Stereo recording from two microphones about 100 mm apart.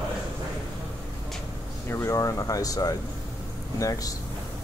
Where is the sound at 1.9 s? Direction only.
30° left (ahead or behind).